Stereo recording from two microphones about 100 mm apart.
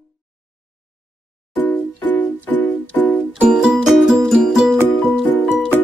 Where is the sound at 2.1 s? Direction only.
20° left (ahead or behind).